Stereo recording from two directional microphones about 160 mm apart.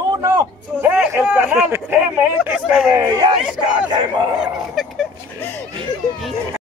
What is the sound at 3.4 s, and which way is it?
Speech, 5° right (ahead or behind).